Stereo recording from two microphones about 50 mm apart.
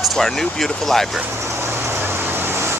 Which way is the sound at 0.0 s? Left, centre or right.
Centre.